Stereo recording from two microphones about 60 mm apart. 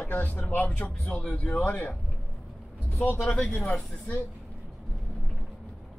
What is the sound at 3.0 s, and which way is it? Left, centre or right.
Speech, left.